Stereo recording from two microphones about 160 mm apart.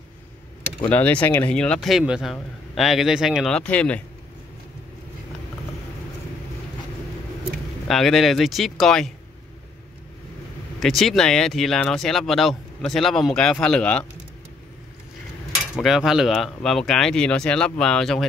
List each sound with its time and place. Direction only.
0.8 s speech: 10° left (ahead or behind)
7.9 s speech: centre (ahead or behind)
10.8 s speech: centre (ahead or behind)
15.8 s speech: centre (ahead or behind)